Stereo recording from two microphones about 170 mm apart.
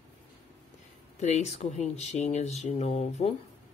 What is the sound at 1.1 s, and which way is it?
Speech, 40° left (ahead or behind).